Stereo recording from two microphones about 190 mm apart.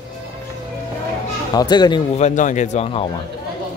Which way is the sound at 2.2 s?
40° left (ahead or behind).